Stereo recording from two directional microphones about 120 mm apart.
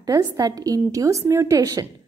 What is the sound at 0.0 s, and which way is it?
A woman's voice, 30° right (ahead or behind).